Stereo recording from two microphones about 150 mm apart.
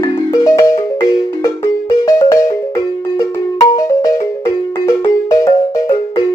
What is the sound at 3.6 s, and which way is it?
Music, 25° left (ahead or behind).